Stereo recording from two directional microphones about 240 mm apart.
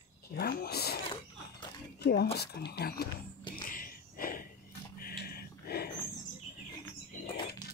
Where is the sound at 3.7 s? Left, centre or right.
Left.